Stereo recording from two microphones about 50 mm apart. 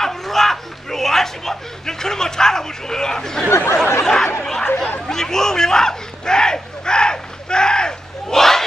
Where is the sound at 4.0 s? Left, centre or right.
Centre.